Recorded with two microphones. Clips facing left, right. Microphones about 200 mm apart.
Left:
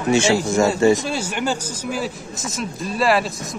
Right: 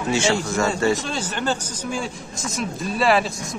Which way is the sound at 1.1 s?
10° left (ahead or behind).